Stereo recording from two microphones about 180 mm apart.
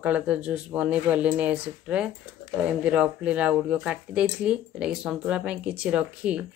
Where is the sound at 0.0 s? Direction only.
5° right (ahead or behind).